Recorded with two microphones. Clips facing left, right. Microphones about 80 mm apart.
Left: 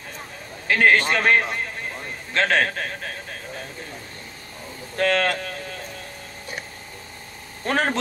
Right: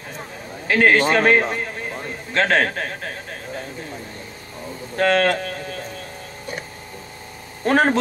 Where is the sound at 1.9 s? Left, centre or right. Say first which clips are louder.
Right 3 dB; right.